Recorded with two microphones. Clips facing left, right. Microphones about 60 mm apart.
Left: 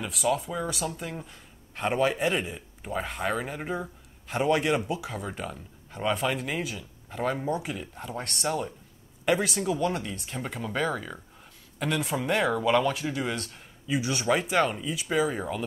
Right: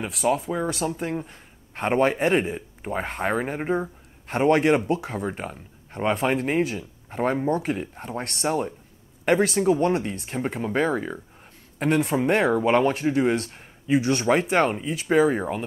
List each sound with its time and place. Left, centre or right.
0.4 s speech: right